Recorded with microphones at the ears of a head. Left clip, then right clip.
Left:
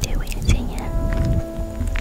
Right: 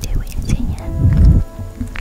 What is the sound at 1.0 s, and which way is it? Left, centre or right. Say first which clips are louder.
Music: right 5 dB; right.